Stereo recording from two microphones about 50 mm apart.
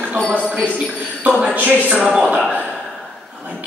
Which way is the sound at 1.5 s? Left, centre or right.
Right.